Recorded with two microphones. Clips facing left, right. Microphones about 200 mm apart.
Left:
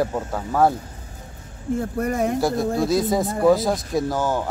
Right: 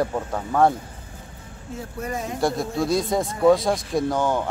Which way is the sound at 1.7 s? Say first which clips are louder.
Left 7 dB; 55° left (ahead or behind).